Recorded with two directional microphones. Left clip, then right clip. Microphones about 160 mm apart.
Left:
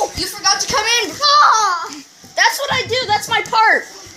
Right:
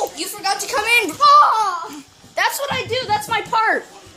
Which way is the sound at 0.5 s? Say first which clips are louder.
Left 1 dB; 45° right (ahead or behind).